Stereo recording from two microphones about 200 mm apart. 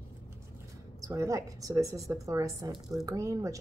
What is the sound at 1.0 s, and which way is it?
Speech, 15° right (ahead or behind).